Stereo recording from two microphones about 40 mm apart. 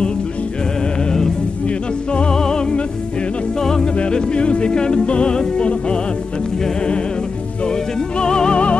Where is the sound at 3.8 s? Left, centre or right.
Left.